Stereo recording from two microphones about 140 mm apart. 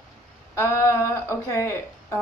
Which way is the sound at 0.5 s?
20° left (ahead or behind).